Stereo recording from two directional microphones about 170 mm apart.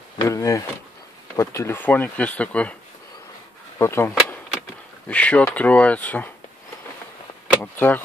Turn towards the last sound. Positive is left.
turn(degrees=10)  # may be behind; listen again after turning